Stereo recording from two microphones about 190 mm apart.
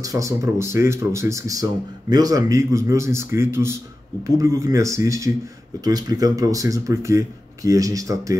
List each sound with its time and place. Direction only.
0.0 s speech: 15° right (ahead or behind)